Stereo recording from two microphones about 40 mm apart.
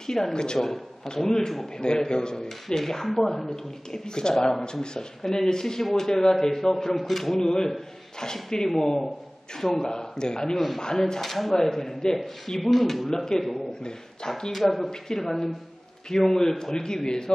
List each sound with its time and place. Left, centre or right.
0.0 s speech: centre
13.1 s speech: centre
14.8 s speech: centre